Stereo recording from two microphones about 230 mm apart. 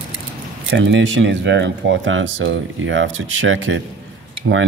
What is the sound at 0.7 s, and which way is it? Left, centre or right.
Speech, right.